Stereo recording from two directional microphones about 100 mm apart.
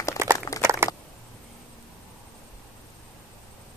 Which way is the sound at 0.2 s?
25° right (ahead or behind).